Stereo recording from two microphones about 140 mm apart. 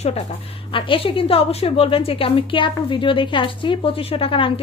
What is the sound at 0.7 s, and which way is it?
A woman's voice, 40° left (ahead or behind).